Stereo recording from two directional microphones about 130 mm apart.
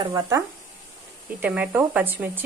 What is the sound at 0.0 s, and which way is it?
Speech, 25° right (ahead or behind).